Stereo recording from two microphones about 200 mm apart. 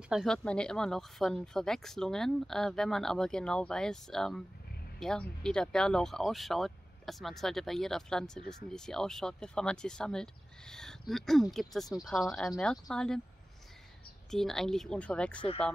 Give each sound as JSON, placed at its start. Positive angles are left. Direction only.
{"t": 0.1, "sound": "speech", "side_deg": 0}
{"t": 14.3, "sound": "speech", "side_deg": 0}